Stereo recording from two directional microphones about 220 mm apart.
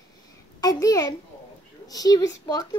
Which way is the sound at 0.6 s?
15° left (ahead or behind).